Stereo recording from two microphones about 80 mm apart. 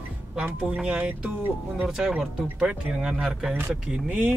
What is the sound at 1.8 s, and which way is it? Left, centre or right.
A man's voice, centre.